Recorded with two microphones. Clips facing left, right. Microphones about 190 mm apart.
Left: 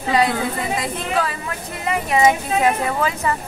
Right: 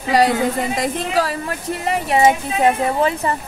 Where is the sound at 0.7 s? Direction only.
40° right (ahead or behind).